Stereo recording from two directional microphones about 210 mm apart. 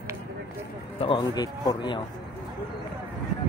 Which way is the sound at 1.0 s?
20° left (ahead or behind).